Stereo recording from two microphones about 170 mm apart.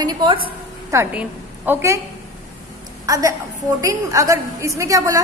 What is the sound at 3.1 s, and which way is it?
A woman's voice, 20° right (ahead or behind).